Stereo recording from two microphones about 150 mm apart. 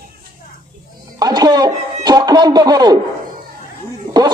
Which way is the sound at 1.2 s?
25° right (ahead or behind).